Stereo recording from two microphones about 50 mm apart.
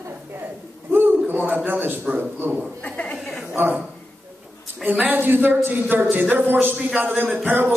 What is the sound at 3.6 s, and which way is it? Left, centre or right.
Speech, right.